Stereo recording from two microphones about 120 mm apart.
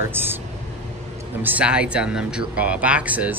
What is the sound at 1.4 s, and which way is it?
Speech, 10° right (ahead or behind).